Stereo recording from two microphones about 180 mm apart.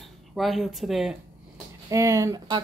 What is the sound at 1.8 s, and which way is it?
Speech, 20° right (ahead or behind).